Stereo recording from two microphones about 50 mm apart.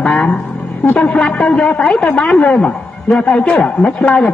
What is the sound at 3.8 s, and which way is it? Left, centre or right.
Speech, left.